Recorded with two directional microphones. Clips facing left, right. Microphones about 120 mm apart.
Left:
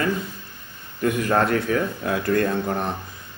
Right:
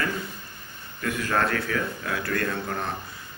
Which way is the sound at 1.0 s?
20° left (ahead or behind).